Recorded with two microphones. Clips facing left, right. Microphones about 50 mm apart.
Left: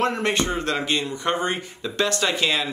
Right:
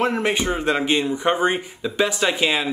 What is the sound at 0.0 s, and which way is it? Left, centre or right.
Speech, centre.